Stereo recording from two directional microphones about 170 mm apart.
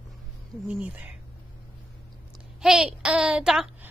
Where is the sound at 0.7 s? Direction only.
10° right (ahead or behind).